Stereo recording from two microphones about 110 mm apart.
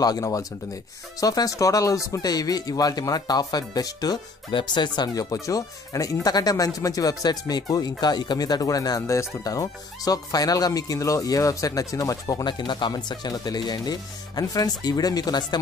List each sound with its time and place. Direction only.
0.0 s speech: 35° left (ahead or behind)
12.4 s speech: 45° left (ahead or behind)